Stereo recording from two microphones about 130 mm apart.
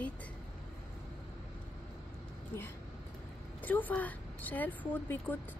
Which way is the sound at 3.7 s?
15° left (ahead or behind).